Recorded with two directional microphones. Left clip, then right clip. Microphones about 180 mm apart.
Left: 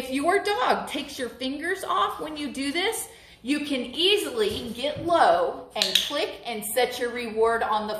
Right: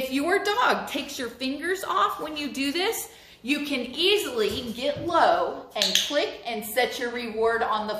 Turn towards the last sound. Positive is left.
turn(degrees=5)  # may be behind; listen again after turning